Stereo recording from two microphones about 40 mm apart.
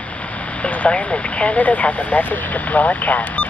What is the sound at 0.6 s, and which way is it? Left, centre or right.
Speech, left.